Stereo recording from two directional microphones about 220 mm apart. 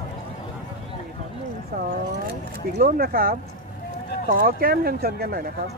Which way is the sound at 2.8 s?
40° right (ahead or behind).